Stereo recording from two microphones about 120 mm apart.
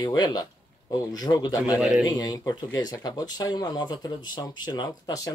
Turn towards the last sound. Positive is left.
turn(degrees=30)  # may be behind; listen again after turning